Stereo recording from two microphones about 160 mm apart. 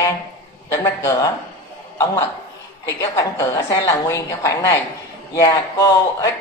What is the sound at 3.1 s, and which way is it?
A woman's voice, 20° left (ahead or behind).